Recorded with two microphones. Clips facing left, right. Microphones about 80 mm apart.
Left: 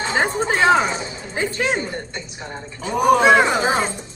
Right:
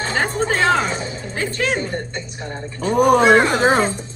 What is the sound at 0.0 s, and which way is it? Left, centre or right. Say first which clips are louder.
Music: even; centre.